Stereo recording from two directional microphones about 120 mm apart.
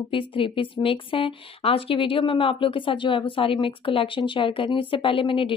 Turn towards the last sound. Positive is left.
turn(degrees=45)  # may be behind; listen again after turning